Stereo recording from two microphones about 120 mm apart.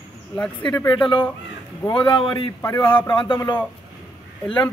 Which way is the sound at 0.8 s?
40° left (ahead or behind).